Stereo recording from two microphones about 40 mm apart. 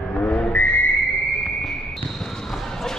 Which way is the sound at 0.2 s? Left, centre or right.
Left.